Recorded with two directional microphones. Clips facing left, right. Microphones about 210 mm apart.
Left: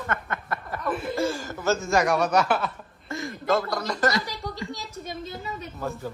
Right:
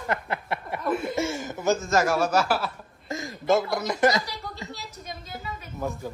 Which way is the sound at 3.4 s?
25° right (ahead or behind).